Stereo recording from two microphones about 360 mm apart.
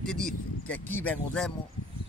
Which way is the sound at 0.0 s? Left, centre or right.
Centre.